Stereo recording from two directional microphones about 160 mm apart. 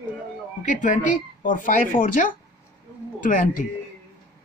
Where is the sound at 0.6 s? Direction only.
50° left (ahead or behind).